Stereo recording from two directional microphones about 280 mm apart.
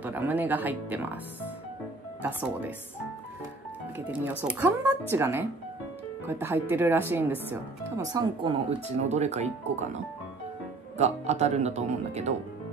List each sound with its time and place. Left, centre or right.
0.0 s speech: centre
2.2 s speech: centre
4.1 s speech: centre; by 9.8 s right
11.0 s speech: right